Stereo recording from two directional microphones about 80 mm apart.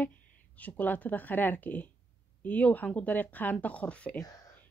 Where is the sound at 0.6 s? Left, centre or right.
Left.